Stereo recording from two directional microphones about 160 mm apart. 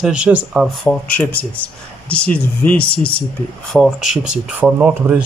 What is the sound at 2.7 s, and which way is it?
Speech, 75° left (ahead or behind).